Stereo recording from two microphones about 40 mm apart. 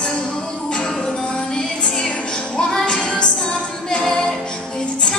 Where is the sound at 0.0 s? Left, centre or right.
Left.